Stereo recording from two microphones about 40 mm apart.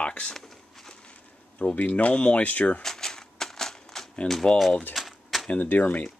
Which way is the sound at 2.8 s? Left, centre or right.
Centre.